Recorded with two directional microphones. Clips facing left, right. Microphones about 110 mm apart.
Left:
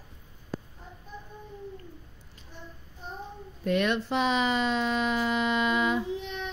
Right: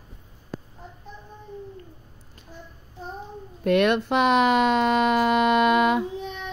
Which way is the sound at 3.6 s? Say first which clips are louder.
Right 6 dB; 65° right (ahead or behind).